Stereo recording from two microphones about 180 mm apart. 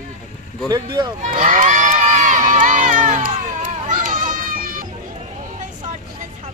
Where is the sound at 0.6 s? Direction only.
25° right (ahead or behind).